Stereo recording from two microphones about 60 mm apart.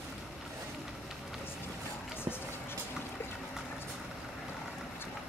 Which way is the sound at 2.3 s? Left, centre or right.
Right.